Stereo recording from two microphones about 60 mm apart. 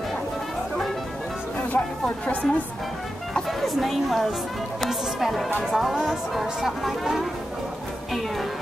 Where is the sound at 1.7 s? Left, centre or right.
Left.